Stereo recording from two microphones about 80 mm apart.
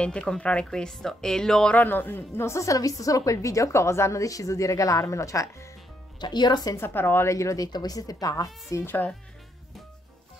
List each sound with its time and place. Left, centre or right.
0.0 s a woman's voice: centre
1.8 s a woman's voice: left
6.1 s speech: left
6.8 s speech: left
8.8 s speech: left